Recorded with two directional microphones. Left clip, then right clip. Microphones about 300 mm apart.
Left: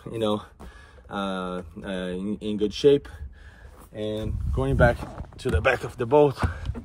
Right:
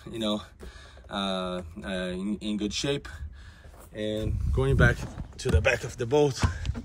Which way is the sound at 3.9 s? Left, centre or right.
Centre.